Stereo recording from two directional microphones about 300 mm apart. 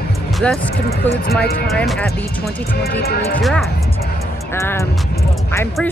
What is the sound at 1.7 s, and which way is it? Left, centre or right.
Speech, centre.